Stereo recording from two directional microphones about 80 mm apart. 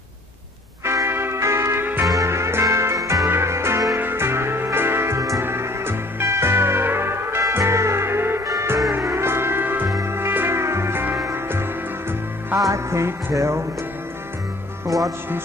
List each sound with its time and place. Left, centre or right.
0.8 s music: right
8.5 s music: right
12.6 s music: right
14.9 s speech: centre